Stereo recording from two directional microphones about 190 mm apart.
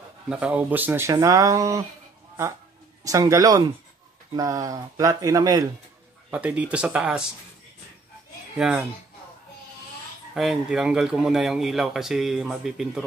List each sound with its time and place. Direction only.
0.3 s speech: 5° right (ahead or behind)
3.0 s speech: 15° right (ahead or behind)
6.3 s speech: 5° right (ahead or behind)
8.5 s speech: 5° right (ahead or behind)
10.3 s speech: centre (ahead or behind)